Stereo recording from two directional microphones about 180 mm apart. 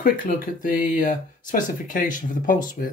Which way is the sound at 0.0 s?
50° left (ahead or behind).